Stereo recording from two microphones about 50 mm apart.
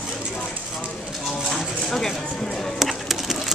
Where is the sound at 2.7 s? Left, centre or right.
Centre.